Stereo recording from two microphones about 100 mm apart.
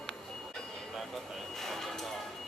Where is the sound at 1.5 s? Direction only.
5° left (ahead or behind).